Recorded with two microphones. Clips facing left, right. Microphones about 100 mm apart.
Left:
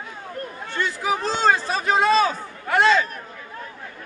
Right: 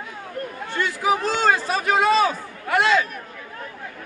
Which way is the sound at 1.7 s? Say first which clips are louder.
Right 1 dB; 25° left (ahead or behind).